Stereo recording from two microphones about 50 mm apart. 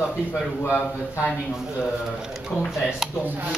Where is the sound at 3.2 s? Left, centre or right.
Right.